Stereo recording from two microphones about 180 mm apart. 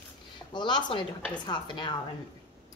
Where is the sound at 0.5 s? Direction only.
25° left (ahead or behind).